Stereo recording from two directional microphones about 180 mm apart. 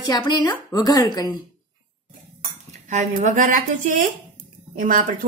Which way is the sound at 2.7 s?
40° right (ahead or behind).